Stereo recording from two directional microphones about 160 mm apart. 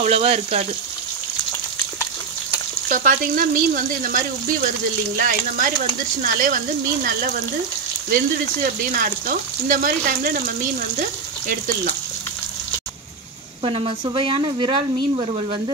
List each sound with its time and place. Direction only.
0.0 s speech: 40° right (ahead or behind)
2.9 s speech: 60° right (ahead or behind)
8.9 s speech: 60° right (ahead or behind)
13.7 s speech: 35° right (ahead or behind)